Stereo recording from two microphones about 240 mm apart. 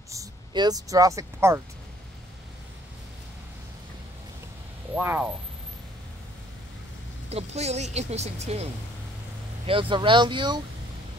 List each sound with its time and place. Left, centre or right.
0.1 s speech: centre
4.9 s speech: centre
7.2 s speech: right
9.7 s speech: right